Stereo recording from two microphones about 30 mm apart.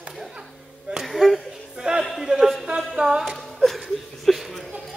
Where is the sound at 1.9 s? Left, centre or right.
Right.